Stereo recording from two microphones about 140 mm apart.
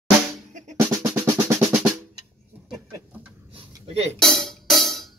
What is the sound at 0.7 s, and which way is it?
Drum, 20° right (ahead or behind).